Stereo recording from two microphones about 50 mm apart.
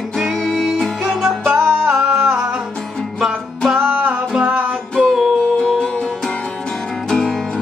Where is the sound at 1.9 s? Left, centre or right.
Centre.